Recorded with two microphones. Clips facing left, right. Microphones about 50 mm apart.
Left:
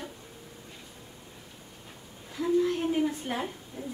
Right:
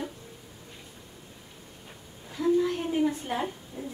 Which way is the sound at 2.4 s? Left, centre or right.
Centre.